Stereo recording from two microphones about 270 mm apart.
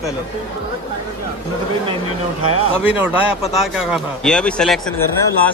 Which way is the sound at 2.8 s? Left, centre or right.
Centre.